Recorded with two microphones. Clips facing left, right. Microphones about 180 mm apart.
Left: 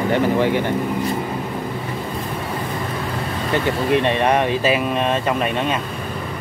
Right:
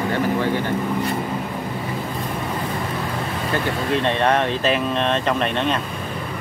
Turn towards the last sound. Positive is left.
turn(degrees=5)  # may be behind; listen again after turning